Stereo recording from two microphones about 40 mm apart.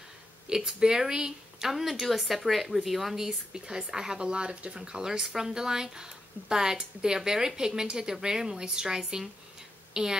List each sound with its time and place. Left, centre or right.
0.5 s speech: centre
1.7 s speech: centre